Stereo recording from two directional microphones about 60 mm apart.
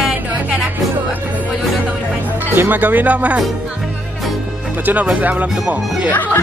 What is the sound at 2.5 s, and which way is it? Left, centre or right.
Speech, right.